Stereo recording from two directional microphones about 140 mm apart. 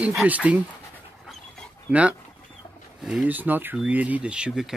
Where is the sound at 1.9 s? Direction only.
10° right (ahead or behind).